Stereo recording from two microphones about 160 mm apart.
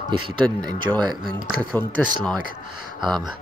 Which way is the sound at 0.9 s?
10° right (ahead or behind).